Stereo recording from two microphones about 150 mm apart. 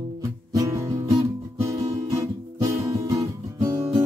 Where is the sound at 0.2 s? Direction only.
20° right (ahead or behind).